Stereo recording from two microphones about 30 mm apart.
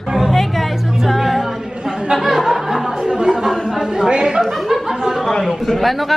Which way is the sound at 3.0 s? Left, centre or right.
Right.